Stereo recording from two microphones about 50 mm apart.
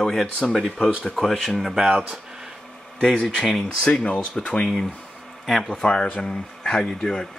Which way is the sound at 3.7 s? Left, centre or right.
Centre.